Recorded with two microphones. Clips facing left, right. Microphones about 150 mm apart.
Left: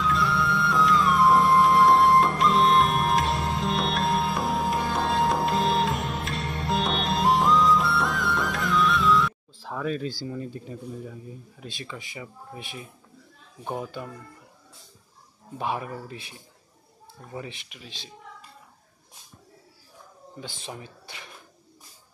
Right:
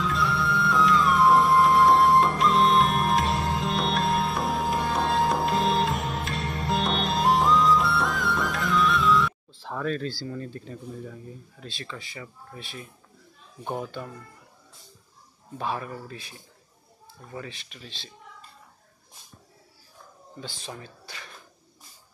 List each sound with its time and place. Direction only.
0.0 s music: centre (ahead or behind); by 12.8 s 15° left (ahead or behind)
13.7 s speech: 5° left (ahead or behind)
15.5 s speech: 15° left (ahead or behind)
20.3 s speech: 15° left (ahead or behind)